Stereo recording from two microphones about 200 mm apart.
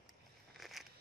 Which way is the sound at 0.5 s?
Centre (ahead or behind).